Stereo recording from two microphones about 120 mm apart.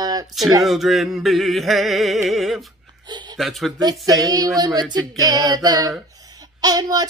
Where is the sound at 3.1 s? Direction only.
40° right (ahead or behind).